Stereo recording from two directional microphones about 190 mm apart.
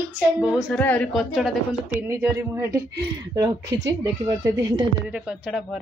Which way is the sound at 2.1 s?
15° right (ahead or behind).